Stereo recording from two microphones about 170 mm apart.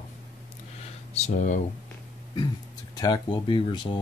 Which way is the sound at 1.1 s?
40° left (ahead or behind).